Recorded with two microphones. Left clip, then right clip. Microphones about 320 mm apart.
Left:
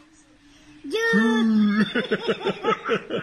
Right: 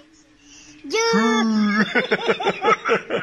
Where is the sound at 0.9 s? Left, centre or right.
Right.